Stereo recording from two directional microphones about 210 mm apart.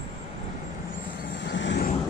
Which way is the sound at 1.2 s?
55° left (ahead or behind).